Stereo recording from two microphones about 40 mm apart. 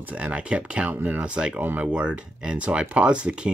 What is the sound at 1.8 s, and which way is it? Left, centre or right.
Speech, right.